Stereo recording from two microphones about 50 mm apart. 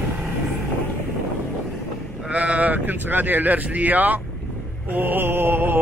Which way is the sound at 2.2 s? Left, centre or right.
Right.